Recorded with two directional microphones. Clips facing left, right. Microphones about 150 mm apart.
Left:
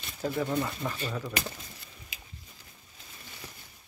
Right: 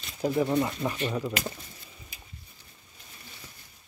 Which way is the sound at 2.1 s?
90° left.